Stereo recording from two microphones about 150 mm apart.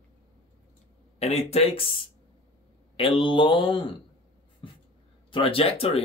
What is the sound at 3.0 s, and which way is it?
Speech, 35° left (ahead or behind).